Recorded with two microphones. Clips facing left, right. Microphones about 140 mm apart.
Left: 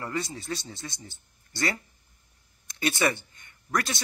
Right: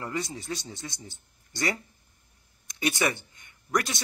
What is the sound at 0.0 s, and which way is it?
A man's voice, 15° right (ahead or behind).